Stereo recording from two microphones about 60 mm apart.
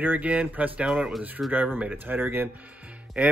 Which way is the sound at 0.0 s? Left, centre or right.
Right.